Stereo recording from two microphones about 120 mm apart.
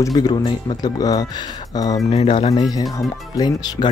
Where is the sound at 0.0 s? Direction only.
30° left (ahead or behind).